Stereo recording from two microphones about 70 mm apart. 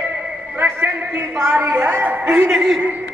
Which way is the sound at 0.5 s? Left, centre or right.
Right.